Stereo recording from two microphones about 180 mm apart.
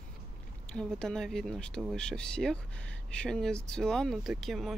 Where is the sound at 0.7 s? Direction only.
5° left (ahead or behind).